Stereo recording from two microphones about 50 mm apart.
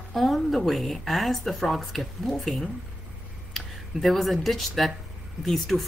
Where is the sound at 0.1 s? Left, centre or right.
Centre.